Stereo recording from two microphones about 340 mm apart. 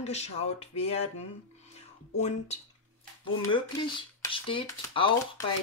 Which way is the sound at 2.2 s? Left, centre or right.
Centre.